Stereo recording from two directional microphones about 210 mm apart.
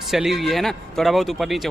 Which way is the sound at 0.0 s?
Centre (ahead or behind).